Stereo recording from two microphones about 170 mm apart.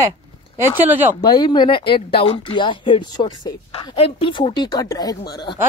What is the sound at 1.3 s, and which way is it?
Speech, 25° left (ahead or behind).